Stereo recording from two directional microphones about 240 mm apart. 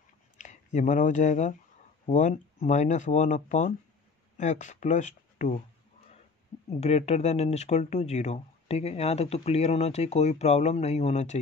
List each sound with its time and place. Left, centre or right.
0.4 s speech: left
6.8 s speech: left